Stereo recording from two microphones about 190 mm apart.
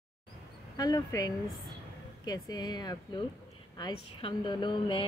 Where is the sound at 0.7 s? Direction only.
20° left (ahead or behind).